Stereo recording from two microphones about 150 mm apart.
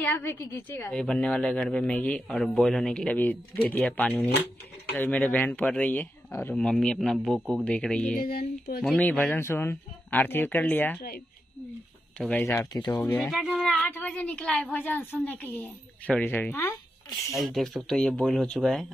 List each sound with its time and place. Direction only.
0.0 s speech: 10° left (ahead or behind)
8.1 s speech: 80° left
8.8 s speech: 10° left (ahead or behind)
12.2 s speech: 10° left (ahead or behind)
12.7 s speech: 25° left (ahead or behind)
13.2 s speech: centre (ahead or behind)
13.8 s speech: 10° left (ahead or behind)
17.3 s speech: centre (ahead or behind)